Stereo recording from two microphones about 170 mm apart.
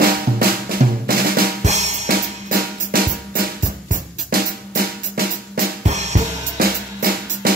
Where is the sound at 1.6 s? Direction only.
45° right (ahead or behind).